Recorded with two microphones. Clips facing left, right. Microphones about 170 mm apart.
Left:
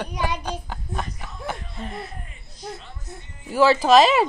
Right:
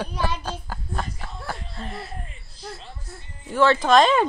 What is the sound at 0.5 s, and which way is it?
Child singing, 5° right (ahead or behind).